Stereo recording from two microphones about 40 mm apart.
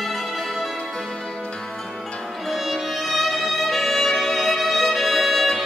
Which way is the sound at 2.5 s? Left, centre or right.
Centre.